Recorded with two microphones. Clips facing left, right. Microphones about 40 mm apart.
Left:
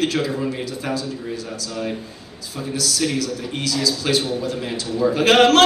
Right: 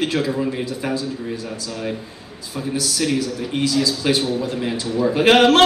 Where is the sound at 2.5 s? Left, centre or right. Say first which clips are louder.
Right 1 dB; right.